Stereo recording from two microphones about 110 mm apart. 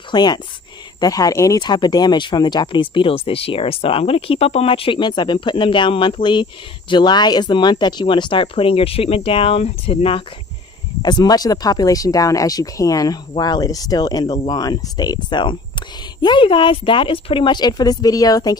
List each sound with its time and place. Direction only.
0.1 s speech: 40° left (ahead or behind); by 10.2 s 60° left (ahead or behind)
11.0 s speech: 40° left (ahead or behind)